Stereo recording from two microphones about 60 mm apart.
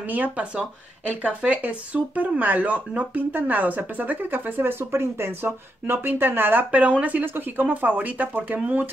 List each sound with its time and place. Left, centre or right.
0.0 s speech: right
7.2 s speech: right